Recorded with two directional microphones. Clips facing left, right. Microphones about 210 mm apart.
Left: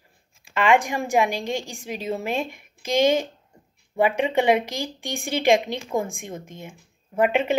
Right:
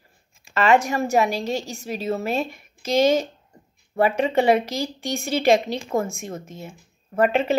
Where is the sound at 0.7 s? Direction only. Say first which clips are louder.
Right 1 dB; 15° left (ahead or behind).